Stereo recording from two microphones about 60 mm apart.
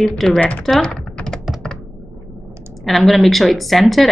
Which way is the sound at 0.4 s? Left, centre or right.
Left.